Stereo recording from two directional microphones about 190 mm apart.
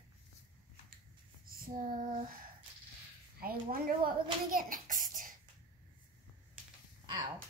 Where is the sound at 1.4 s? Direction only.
45° right (ahead or behind).